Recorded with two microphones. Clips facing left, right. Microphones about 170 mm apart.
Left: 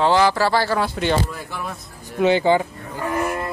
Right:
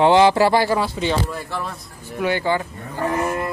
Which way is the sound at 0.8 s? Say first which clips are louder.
Left 1 dB; centre (ahead or behind).